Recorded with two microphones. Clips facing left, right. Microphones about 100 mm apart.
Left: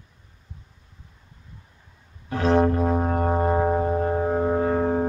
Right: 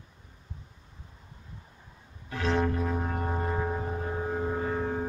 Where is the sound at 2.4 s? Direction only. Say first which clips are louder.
Left 8 dB; 40° left (ahead or behind).